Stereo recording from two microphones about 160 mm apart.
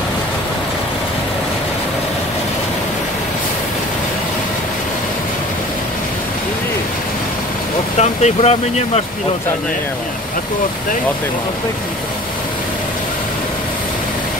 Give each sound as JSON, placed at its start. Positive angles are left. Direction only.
{"t": 8.0, "sound": "speech", "side_deg": 45}